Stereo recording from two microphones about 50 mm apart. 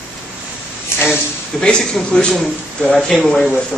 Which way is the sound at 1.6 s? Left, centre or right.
Centre.